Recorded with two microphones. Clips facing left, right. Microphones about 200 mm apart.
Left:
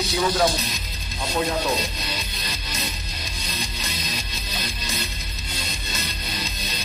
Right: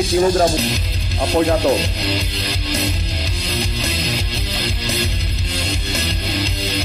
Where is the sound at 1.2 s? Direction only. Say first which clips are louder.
Right 9 dB; 65° right (ahead or behind).